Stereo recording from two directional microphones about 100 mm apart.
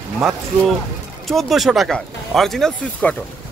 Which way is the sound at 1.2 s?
Centre (ahead or behind).